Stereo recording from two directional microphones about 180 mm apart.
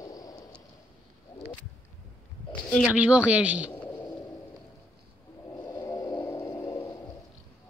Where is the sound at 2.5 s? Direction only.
5° left (ahead or behind).